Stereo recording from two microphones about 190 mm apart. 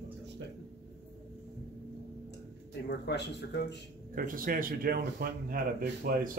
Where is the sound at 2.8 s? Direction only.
60° left (ahead or behind).